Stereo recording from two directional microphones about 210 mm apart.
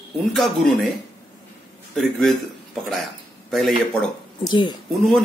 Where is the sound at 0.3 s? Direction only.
Centre (ahead or behind).